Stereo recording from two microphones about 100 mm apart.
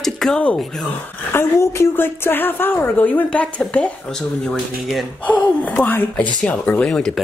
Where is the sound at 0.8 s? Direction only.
20° left (ahead or behind); by 5.0 s centre (ahead or behind).